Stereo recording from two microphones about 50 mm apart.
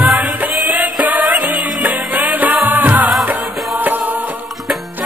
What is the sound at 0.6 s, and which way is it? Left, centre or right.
Music, right.